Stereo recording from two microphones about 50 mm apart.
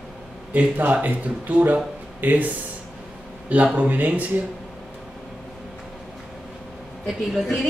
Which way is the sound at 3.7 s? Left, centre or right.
Right.